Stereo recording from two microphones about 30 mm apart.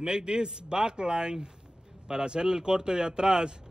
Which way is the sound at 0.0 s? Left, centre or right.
Right.